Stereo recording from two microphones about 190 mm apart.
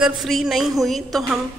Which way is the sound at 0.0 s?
Centre (ahead or behind).